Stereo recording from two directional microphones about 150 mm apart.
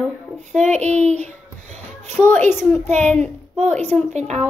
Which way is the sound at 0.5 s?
50° right (ahead or behind).